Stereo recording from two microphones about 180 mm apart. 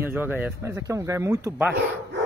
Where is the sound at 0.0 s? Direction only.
10° right (ahead or behind).